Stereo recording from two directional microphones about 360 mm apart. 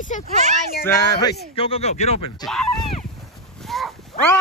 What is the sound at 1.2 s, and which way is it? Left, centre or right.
Speech, centre.